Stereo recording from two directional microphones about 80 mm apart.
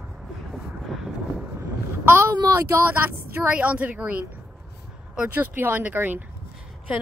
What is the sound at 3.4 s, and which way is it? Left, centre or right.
Speech, centre.